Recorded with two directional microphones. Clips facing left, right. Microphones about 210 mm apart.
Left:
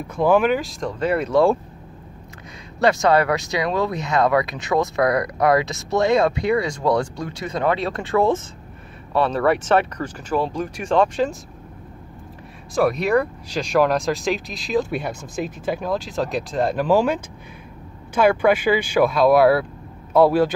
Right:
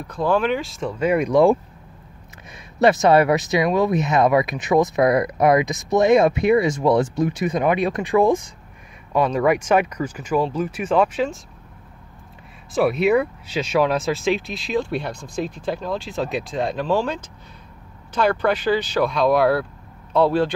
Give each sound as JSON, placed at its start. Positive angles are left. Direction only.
{"t": 0.0, "sound": "speech", "side_deg": 10}
{"t": 2.8, "sound": "speech", "side_deg": -20}
{"t": 12.7, "sound": "a man's voice", "side_deg": -5}